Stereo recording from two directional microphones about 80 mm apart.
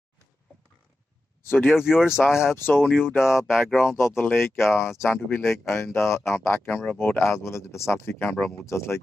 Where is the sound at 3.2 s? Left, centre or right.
Centre.